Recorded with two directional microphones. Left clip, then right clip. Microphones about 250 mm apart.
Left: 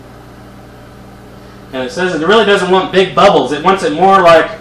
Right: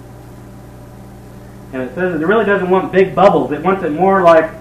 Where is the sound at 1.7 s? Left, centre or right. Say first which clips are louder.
Left 3 dB; left.